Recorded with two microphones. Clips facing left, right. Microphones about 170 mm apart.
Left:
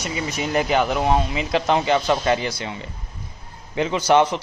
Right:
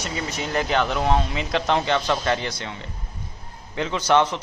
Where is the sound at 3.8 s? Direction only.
10° left (ahead or behind).